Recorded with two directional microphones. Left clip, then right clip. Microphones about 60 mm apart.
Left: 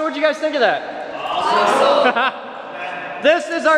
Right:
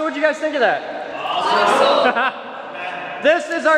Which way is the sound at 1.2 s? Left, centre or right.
Centre.